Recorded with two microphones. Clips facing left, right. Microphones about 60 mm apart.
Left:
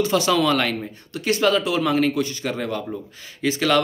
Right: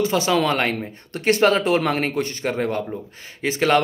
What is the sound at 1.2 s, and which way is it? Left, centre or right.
Speech, right.